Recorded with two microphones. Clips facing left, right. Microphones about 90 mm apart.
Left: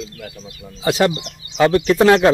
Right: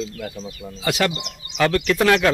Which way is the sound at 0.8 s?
30° left (ahead or behind).